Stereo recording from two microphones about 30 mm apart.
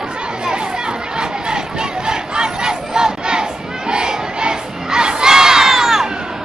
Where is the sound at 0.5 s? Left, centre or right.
Right.